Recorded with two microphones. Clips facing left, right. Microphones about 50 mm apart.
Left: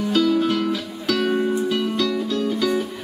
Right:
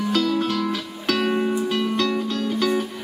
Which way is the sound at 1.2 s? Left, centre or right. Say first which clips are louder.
Left 2 dB; centre.